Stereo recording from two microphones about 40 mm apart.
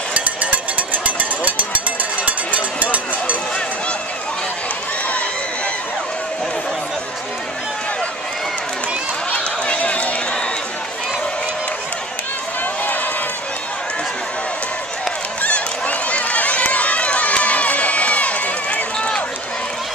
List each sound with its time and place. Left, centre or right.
0.1 s a sound: right
9.3 s run: left
15.4 s run: left
18.9 s run: left